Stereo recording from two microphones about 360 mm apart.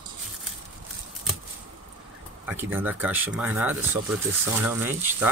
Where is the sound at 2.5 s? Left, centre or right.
Centre.